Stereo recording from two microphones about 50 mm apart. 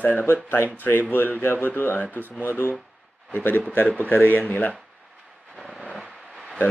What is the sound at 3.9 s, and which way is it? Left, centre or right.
Speech, left.